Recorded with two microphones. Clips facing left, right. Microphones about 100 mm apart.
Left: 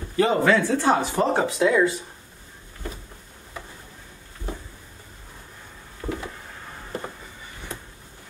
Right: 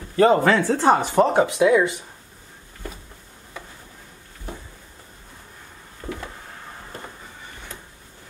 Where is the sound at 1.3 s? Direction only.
15° right (ahead or behind).